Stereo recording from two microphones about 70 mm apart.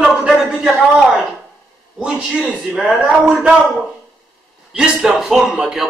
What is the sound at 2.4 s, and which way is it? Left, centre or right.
Speech, centre.